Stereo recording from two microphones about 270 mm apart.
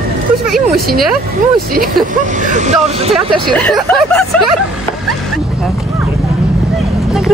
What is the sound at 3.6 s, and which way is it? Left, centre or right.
Speech, centre.